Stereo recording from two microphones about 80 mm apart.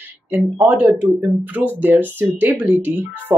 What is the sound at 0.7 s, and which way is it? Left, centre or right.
Speech, right.